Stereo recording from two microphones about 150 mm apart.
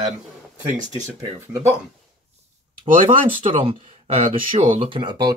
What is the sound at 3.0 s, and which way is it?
Speech, 65° right (ahead or behind).